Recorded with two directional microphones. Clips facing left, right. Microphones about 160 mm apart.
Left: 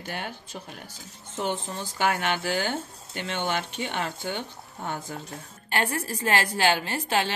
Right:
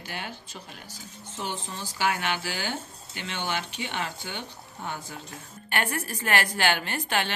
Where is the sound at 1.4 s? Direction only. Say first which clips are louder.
Left 5 dB; 55° left (ahead or behind).